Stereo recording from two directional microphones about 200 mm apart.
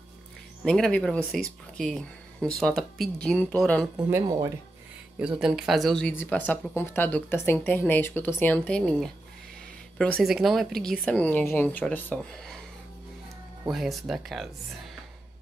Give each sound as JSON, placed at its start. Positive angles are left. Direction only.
{"t": 0.7, "sound": "speech", "side_deg": 5}
{"t": 3.9, "sound": "speech", "side_deg": -15}
{"t": 5.2, "sound": "speech", "side_deg": -5}
{"t": 10.1, "sound": "speech", "side_deg": 0}
{"t": 13.7, "sound": "speech", "side_deg": 0}